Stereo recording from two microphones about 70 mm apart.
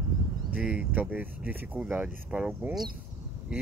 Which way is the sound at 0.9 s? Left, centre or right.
Right.